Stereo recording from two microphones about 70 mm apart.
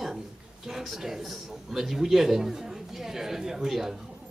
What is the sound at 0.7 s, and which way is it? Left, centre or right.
A man's voice, centre.